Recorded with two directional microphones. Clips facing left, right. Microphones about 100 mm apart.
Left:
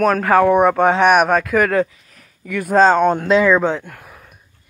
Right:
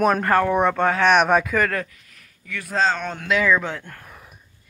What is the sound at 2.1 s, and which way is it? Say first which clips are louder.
Speech: left 8 dB; 45° left (ahead or behind).